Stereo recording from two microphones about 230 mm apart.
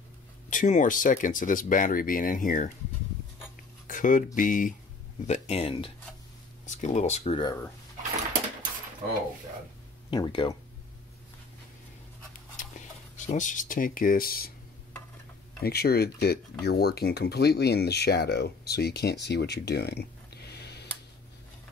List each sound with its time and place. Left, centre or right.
0.5 s speech: left
3.8 s a sound: left
4.4 s speech: left
10.1 s speech: left
12.5 s speech: left
15.6 s speech: left